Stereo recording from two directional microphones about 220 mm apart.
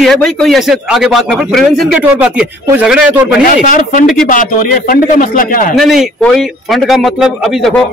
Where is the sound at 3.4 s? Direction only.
40° left (ahead or behind).